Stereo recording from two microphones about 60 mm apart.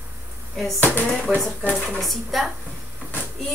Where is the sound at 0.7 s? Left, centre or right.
Left.